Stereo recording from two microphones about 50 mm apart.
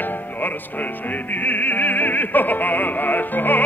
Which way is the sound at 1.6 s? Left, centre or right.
Left.